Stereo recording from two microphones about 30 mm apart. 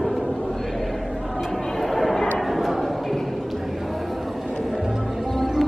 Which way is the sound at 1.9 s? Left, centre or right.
Centre.